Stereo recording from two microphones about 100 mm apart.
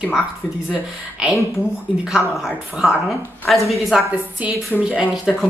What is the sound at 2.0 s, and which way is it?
Speech, 5° right (ahead or behind).